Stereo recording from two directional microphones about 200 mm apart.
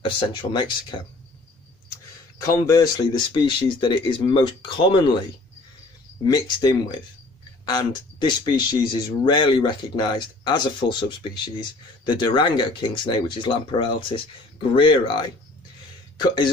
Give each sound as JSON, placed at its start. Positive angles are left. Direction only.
{"t": 0.0, "sound": "speech", "side_deg": 25}
{"t": 2.4, "sound": "speech", "side_deg": 20}
{"t": 6.2, "sound": "speech", "side_deg": 20}